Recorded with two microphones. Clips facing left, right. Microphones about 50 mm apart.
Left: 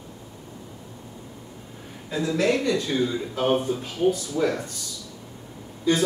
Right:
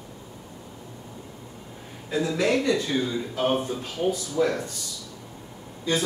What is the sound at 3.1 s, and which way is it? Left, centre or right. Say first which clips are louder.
A man's voice: left 2 dB; centre.